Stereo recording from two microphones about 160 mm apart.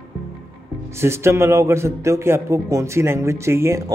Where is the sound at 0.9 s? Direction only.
15° right (ahead or behind).